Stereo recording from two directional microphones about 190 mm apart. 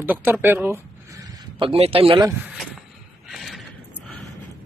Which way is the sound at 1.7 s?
30° right (ahead or behind).